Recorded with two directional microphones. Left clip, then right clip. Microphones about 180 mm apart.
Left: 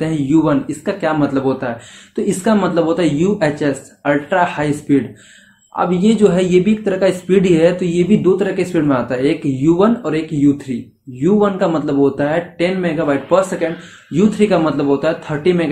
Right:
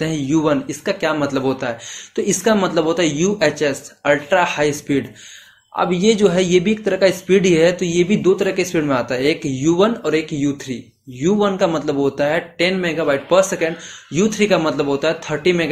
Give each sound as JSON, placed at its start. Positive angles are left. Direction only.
{"t": 0.0, "sound": "speech", "side_deg": -30}